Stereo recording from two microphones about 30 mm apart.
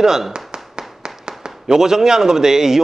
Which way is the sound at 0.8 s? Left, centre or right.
Right.